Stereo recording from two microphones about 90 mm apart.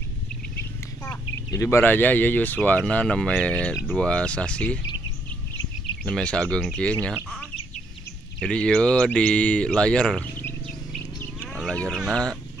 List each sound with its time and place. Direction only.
1.0 s a sound: 40° left (ahead or behind)
1.8 s speech: 20° left (ahead or behind)
6.0 s speech: 10° left (ahead or behind)
8.5 s speech: 10° left (ahead or behind)
12.1 s speech: 10° left (ahead or behind)